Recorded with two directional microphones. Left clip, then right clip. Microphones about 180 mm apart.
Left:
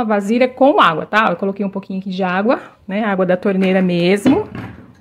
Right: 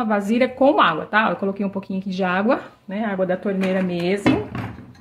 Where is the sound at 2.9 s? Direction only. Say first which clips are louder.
Left 6 dB; 65° left (ahead or behind).